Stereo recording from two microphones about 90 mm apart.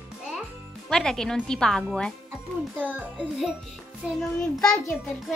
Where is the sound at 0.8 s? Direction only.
5° left (ahead or behind).